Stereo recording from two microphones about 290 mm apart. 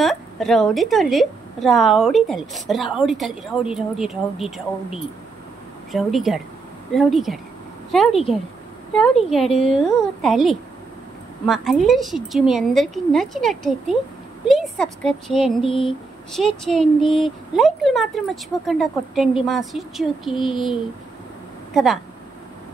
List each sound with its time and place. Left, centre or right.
0.0 s a woman's voice: centre
15.6 s a sound: centre
16.3 s a woman's voice: centre